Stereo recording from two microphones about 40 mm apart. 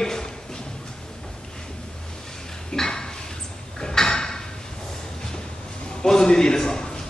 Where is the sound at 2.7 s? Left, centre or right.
Centre.